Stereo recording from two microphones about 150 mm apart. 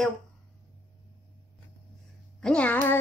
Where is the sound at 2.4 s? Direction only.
10° left (ahead or behind).